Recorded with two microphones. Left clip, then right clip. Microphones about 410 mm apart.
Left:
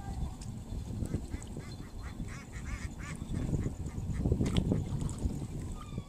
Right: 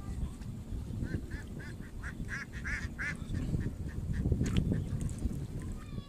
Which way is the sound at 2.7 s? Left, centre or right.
Right.